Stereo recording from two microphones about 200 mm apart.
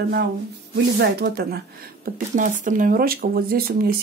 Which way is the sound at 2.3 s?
40° right (ahead or behind).